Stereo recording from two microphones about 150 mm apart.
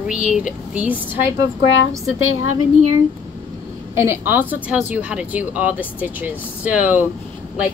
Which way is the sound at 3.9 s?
15° right (ahead or behind).